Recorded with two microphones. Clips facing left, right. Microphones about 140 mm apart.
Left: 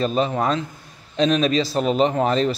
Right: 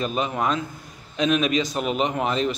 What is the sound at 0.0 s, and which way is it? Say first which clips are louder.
A man's voice: left 4 dB; 35° left (ahead or behind).